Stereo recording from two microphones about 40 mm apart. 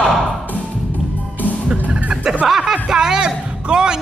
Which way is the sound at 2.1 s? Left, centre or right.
Right.